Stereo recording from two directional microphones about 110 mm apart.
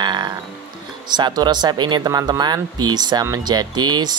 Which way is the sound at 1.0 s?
40° right (ahead or behind).